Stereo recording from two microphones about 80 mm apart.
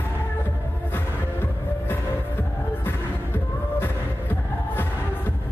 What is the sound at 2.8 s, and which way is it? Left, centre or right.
Music, left.